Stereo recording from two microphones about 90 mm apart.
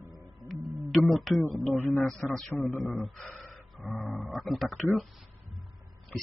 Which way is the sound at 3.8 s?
5° left (ahead or behind).